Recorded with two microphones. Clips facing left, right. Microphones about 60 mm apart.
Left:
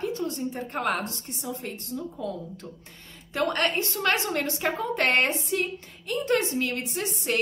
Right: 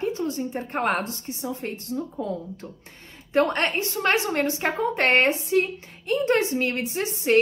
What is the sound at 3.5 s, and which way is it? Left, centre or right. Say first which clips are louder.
Speech: right 1 dB; right.